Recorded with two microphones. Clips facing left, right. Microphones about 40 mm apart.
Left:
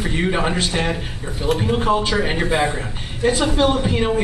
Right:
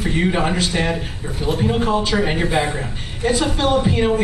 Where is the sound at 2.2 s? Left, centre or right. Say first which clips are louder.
Even; centre.